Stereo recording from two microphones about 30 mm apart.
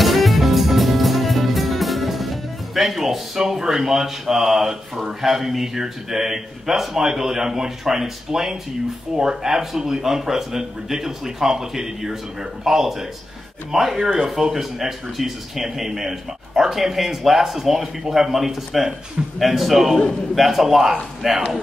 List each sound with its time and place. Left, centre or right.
0.0 s music: centre
7.0 s a man's voice: centre